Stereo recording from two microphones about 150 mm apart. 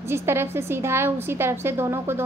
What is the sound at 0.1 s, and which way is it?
A woman's voice, 15° right (ahead or behind).